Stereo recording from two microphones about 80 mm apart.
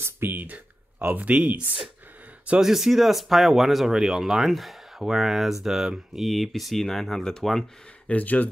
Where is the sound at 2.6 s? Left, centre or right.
Centre.